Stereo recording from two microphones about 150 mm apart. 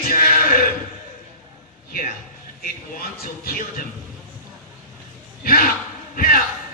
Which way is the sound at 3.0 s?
80° left.